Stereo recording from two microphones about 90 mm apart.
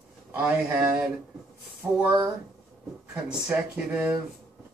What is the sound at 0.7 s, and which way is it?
Speech, 10° right (ahead or behind).